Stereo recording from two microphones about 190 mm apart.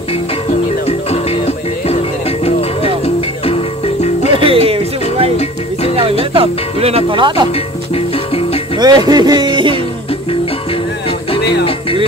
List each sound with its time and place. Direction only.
0.5 s music: 35° left (ahead or behind)
4.3 s a sound: 30° right (ahead or behind)
6.3 s speech: 30° right (ahead or behind)
8.7 s speech: 20° right (ahead or behind)